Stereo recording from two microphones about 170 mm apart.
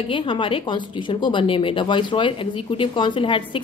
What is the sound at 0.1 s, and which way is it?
A woman's voice, 30° left (ahead or behind).